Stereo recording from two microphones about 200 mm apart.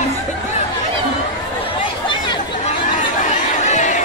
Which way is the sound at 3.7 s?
35° left (ahead or behind).